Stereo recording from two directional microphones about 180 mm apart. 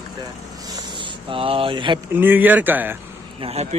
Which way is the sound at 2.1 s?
10° right (ahead or behind).